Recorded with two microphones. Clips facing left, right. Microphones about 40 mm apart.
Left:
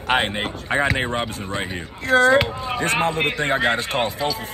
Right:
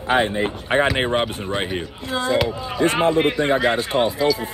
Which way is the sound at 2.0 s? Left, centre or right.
Left.